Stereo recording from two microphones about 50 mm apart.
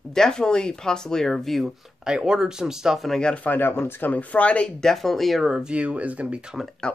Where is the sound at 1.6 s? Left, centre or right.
Centre.